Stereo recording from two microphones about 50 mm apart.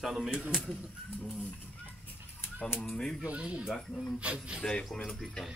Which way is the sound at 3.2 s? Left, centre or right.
Right.